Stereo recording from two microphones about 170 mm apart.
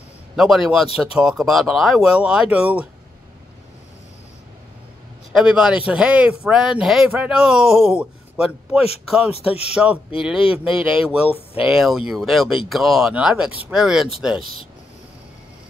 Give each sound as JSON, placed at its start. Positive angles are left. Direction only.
{"t": 0.4, "sound": "speech", "side_deg": 0}
{"t": 5.3, "sound": "speech", "side_deg": -5}
{"t": 14.4, "sound": "speech", "side_deg": -55}